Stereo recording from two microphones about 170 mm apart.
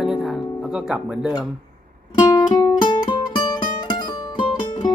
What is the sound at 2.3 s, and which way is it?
Music, 20° left (ahead or behind).